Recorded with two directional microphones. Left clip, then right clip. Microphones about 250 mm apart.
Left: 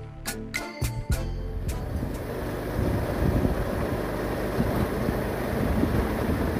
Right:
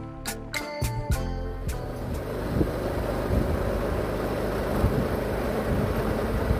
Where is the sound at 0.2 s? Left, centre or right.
Centre.